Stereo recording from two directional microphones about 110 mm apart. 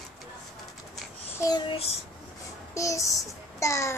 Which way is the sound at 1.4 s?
40° left (ahead or behind).